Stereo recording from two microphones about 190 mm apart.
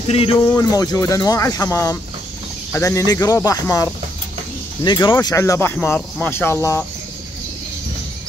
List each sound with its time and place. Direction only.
0.1 s speech: 30° left (ahead or behind)
0.6 s speech: 20° left (ahead or behind)